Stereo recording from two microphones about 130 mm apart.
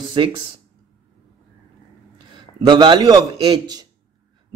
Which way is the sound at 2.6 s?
35° right (ahead or behind).